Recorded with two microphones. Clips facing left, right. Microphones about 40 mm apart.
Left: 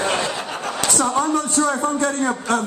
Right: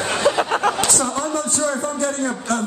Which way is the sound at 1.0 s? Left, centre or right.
Centre.